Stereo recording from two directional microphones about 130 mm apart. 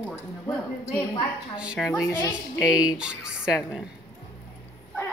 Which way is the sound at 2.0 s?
20° left (ahead or behind).